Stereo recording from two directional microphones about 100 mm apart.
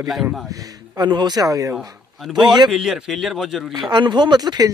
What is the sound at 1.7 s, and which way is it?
Speech, 5° right (ahead or behind).